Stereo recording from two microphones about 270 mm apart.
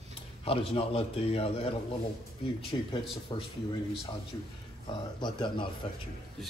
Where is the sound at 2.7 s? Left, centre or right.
Centre.